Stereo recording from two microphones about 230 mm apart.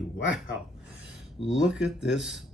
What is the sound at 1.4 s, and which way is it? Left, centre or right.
Speech, centre.